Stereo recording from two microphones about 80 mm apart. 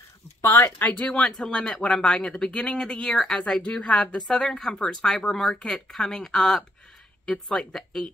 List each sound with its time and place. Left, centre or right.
0.4 s speech: left; by 8.0 s centre